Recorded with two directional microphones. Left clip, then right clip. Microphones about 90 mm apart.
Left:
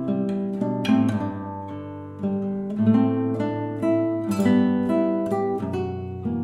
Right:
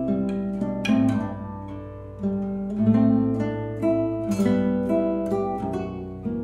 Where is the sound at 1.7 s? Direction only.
25° left (ahead or behind).